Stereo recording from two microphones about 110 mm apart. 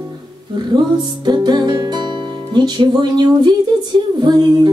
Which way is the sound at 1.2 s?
40° right (ahead or behind).